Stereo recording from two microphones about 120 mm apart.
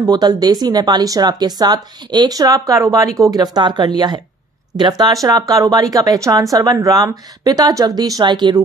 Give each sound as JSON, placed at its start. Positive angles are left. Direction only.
{"t": 0.0, "sound": "speech", "side_deg": -35}